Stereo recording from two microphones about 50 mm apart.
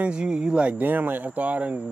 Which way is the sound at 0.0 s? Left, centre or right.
Centre.